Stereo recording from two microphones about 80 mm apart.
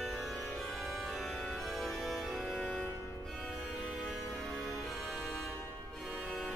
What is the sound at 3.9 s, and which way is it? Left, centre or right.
Music, centre.